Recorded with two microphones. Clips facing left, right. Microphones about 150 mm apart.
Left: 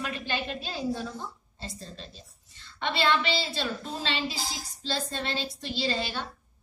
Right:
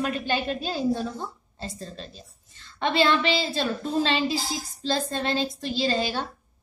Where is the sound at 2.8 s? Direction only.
40° right (ahead or behind).